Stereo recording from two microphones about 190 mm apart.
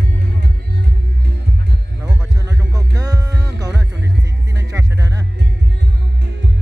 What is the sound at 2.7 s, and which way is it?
Music, 20° right (ahead or behind).